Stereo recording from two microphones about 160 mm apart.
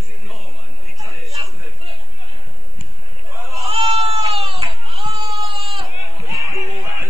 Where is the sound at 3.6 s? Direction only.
35° right (ahead or behind).